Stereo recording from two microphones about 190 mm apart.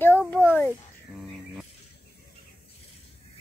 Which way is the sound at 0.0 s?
10° left (ahead or behind).